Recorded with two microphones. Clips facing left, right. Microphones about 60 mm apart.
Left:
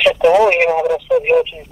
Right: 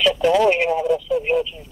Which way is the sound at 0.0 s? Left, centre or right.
Left.